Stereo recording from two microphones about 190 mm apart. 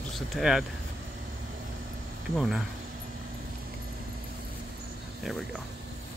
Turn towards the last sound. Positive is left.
turn(degrees=0)  # may be behind; listen again after turning